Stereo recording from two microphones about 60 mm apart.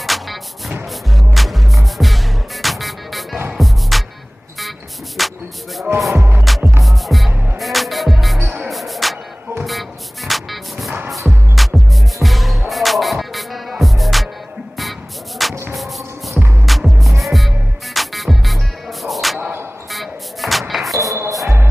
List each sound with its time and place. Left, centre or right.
0.0 s music: centre
4.6 s a sound: centre
6.1 s music: right
6.8 s music: centre
7.2 s music: right
7.5 s music: centre